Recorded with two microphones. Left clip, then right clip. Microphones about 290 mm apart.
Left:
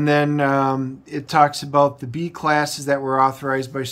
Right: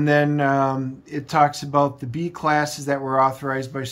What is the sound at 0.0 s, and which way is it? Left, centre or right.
Speech, centre.